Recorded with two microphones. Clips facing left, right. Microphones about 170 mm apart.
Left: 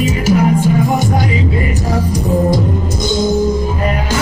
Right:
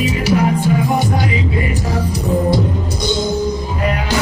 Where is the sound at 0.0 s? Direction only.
45° left (ahead or behind).